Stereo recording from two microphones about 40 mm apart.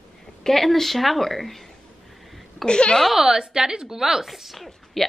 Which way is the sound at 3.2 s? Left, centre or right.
Centre.